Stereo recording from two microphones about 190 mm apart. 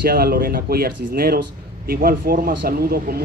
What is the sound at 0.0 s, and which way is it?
Speech, 50° right (ahead or behind).